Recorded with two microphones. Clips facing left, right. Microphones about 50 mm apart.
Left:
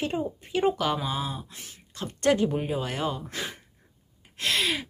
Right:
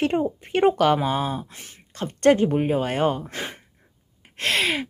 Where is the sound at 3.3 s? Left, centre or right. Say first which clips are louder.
Right 2 dB; right.